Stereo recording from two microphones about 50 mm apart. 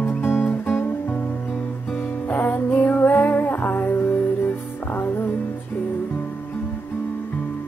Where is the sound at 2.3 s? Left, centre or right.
Left.